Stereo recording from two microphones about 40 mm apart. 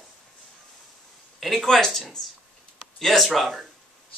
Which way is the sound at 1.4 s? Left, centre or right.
Centre.